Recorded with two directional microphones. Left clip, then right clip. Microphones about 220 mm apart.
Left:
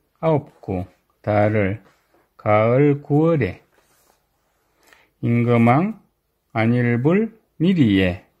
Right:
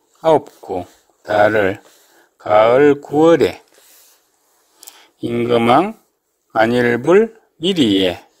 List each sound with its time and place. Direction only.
0.2 s speech: 20° right (ahead or behind)
5.3 s speech: 15° right (ahead or behind)